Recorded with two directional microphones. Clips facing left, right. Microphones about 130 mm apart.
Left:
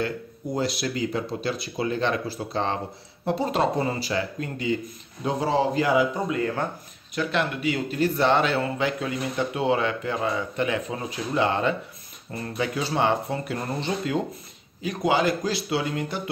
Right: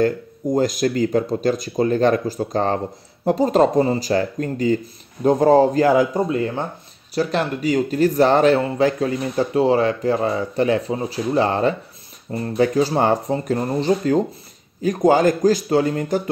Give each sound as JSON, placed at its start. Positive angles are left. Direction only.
{"t": 0.0, "sound": "speech", "side_deg": -45}
{"t": 6.3, "sound": "speech", "side_deg": -30}